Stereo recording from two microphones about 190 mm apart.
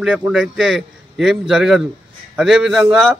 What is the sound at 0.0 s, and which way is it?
A man's voice, 5° right (ahead or behind).